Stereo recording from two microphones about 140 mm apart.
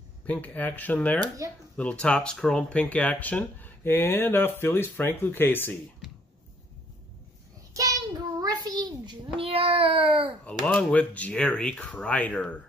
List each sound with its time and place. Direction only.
0.3 s speech: 10° left (ahead or behind)
7.7 s child singing: 25° right (ahead or behind)
10.4 s speech: 5° left (ahead or behind)